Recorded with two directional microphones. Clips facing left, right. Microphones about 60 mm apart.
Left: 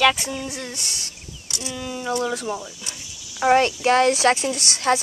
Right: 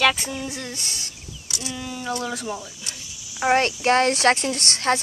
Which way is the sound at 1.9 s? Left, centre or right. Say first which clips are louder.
Left 4 dB; left.